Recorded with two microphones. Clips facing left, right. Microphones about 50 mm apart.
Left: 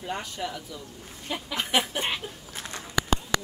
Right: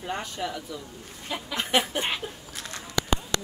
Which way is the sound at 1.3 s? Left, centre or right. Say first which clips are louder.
Right 1 dB; centre.